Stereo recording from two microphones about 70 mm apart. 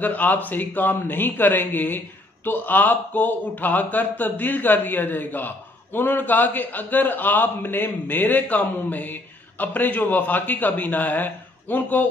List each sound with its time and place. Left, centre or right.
0.0 s a man's voice: left